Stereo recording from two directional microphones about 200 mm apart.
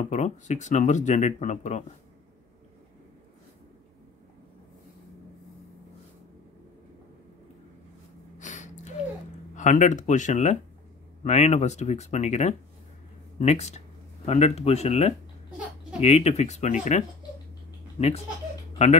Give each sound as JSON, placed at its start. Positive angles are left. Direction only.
{"t": 0.1, "sound": "speech", "side_deg": 35}
{"t": 8.4, "sound": "gasp", "side_deg": 35}
{"t": 9.6, "sound": "speech", "side_deg": 40}